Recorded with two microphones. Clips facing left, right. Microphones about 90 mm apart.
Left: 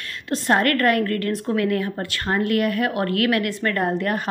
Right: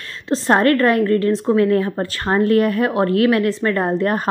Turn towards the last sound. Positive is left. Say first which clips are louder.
# right 4 dB
turn(degrees=-35)  # may be behind; listen again after turning